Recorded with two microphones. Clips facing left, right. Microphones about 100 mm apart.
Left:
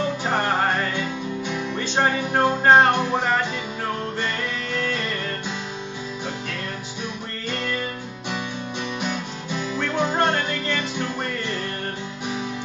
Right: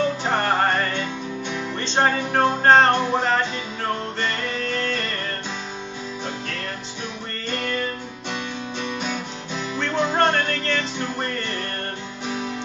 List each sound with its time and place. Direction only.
0.2 s music: 5° left (ahead or behind)
9.0 s music: 10° left (ahead or behind)